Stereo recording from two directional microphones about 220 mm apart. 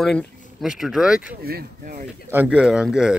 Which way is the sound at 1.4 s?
45° right (ahead or behind).